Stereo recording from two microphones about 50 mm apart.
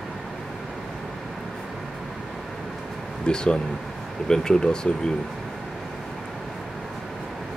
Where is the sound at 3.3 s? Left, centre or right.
Centre.